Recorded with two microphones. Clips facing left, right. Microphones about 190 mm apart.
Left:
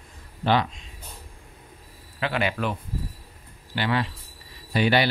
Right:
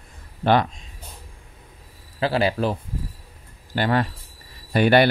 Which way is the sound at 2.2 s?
35° right (ahead or behind).